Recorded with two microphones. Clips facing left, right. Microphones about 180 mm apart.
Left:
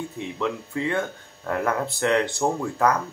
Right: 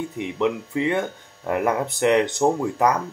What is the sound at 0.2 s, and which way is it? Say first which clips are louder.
Speech: right 5 dB; 20° right (ahead or behind).